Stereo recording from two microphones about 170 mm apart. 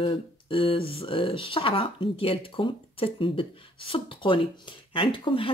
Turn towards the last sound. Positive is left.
turn(degrees=30)  # may be behind; listen again after turning